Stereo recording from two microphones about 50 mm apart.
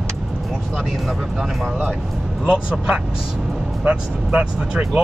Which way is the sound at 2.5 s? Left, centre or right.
Right.